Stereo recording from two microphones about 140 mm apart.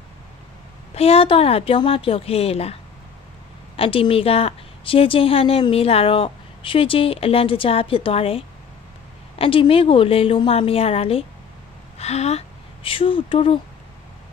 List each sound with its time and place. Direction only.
0.9 s a woman's voice: 45° left (ahead or behind)
3.7 s a woman's voice: 40° left (ahead or behind)